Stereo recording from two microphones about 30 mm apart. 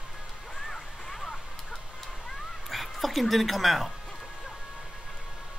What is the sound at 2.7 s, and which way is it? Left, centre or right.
Speech, centre.